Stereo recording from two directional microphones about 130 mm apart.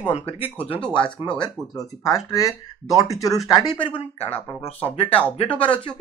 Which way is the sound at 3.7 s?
40° left (ahead or behind).